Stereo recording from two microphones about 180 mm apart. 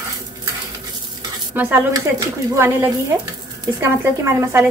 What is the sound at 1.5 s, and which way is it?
Speech, 10° right (ahead or behind).